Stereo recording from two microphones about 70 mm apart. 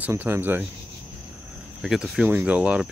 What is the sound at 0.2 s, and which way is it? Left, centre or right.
Speech, right.